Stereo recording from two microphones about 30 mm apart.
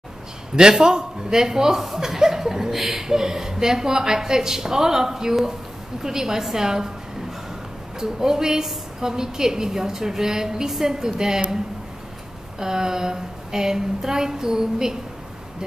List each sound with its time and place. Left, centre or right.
0.6 s a woman's voice: right
8.0 s a woman's voice: centre
12.5 s a woman's voice: centre